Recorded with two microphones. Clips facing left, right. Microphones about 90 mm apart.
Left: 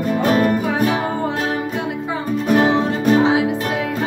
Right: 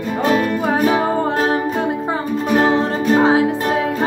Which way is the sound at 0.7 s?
45° right (ahead or behind).